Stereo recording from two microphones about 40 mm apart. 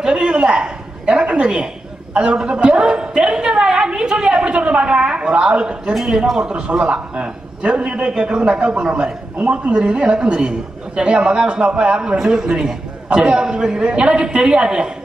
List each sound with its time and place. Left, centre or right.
0.0 s a sound: right
2.1 s a woman's voice: right
12.2 s a man's voice: centre